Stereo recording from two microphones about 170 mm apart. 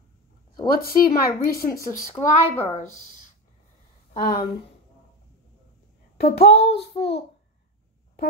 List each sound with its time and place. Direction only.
0.7 s speech: 60° left (ahead or behind)
1.7 s speech: 15° left (ahead or behind)
2.8 s speech: 45° left (ahead or behind)
4.2 s speech: 60° left (ahead or behind)
6.2 s a child's voice: 35° left (ahead or behind)